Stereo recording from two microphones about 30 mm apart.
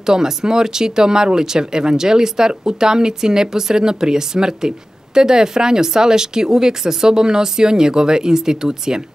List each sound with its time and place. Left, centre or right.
0.0 s speech: right